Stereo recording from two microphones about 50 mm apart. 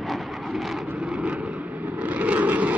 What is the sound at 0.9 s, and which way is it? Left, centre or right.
Vehicle, right.